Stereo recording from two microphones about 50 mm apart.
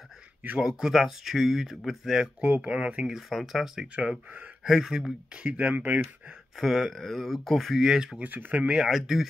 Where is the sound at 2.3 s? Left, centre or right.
Right.